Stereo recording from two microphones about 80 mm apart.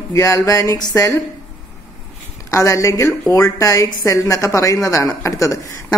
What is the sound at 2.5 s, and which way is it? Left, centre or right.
A woman's voice, left.